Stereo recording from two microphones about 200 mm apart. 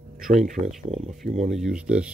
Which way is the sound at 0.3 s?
35° right (ahead or behind).